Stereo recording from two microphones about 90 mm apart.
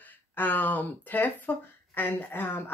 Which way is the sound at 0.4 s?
20° left (ahead or behind).